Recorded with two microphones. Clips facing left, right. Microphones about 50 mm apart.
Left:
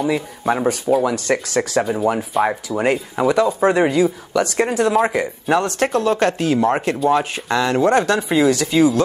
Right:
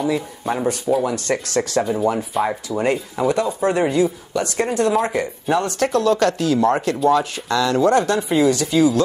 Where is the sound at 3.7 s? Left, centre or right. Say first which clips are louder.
Left 2 dB; left.